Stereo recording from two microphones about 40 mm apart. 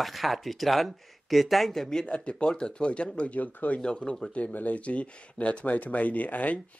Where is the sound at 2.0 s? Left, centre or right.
Left.